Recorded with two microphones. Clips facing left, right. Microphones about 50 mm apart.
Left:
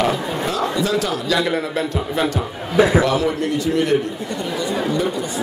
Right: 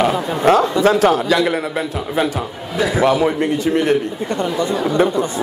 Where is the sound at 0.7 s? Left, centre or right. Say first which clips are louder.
Right 7 dB; right.